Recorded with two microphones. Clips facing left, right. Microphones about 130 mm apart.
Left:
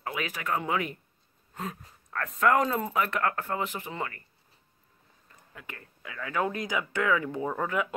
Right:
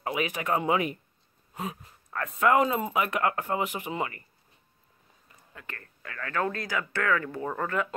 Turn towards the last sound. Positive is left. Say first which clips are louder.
# left 1 dB
turn(degrees=10)  # may be behind; listen again after turning